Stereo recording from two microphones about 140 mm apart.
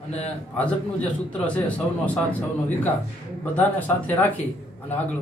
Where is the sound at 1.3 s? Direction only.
10° left (ahead or behind).